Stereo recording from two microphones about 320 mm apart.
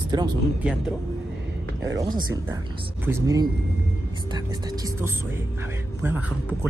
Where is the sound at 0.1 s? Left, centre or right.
Centre.